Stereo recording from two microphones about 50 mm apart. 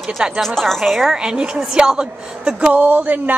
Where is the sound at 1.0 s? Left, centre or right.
Centre.